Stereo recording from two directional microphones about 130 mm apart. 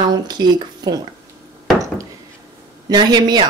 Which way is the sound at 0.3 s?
35° right (ahead or behind).